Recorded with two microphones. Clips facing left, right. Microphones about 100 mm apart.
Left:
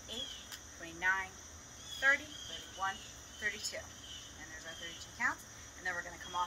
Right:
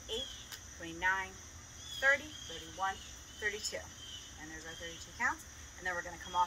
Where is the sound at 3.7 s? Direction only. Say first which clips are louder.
Right 2 dB; centre (ahead or behind).